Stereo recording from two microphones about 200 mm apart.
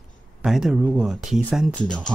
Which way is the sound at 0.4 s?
5° right (ahead or behind).